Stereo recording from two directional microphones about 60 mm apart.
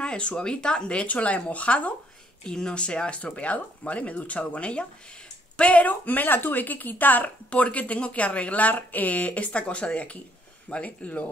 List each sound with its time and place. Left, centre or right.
0.0 s speech: centre